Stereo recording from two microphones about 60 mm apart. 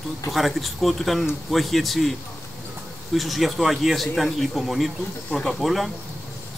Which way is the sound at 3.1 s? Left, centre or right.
Centre.